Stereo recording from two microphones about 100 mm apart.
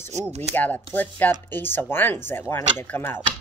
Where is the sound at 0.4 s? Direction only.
20° left (ahead or behind).